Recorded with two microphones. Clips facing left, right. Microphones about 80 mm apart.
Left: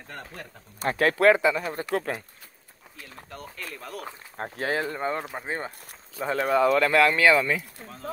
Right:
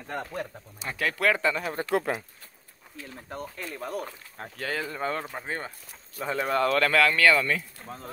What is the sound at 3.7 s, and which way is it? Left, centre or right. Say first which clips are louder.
Speech: right 7 dB; centre.